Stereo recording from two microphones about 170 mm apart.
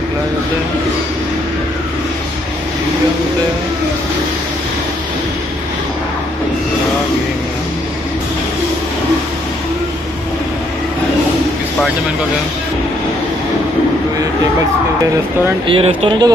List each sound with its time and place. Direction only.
15.6 s speech: 30° right (ahead or behind)